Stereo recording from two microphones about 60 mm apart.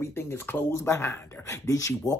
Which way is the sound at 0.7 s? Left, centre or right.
Left.